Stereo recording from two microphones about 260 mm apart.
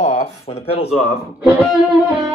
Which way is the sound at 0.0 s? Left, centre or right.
Left.